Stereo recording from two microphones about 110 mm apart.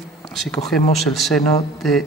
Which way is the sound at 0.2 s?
Centre (ahead or behind).